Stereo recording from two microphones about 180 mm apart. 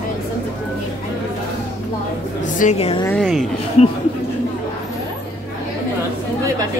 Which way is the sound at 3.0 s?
5° left (ahead or behind).